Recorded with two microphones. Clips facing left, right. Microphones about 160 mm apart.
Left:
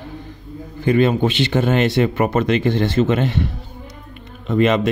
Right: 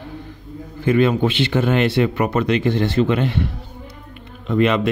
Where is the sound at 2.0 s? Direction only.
40° left (ahead or behind).